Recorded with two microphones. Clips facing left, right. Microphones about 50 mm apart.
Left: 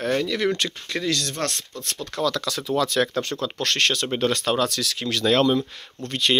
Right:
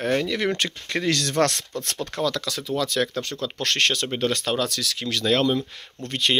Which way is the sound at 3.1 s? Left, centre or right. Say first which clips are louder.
Left 3 dB; left.